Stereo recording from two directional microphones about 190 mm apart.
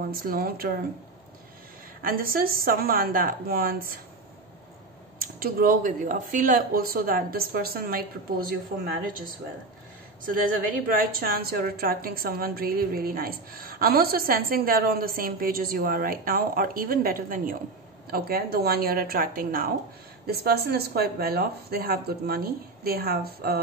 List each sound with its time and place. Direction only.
0.1 s a woman's voice: 50° right (ahead or behind)
2.0 s a woman's voice: 50° right (ahead or behind)
5.2 s a woman's voice: 50° right (ahead or behind)
10.9 s a woman's voice: 50° right (ahead or behind)